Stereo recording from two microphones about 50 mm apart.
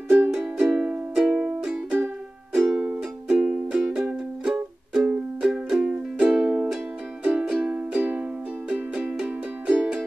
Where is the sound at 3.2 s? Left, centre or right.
Centre.